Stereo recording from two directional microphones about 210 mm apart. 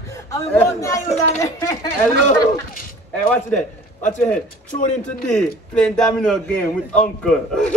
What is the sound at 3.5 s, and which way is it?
A man's voice, 35° left (ahead or behind).